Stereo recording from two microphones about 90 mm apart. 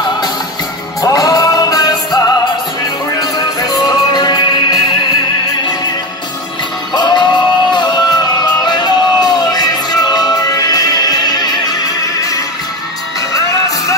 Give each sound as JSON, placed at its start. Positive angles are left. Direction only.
{"t": 1.0, "sound": "music", "side_deg": 45}
{"t": 3.2, "sound": "music", "side_deg": 45}
{"t": 6.9, "sound": "music", "side_deg": 55}